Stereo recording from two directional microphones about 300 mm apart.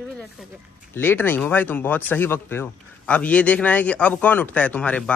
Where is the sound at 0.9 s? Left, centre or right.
Centre.